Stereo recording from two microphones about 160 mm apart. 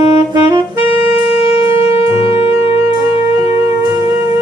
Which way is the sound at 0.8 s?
35° left (ahead or behind).